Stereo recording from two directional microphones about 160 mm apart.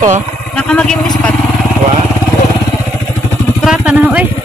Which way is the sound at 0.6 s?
5° left (ahead or behind).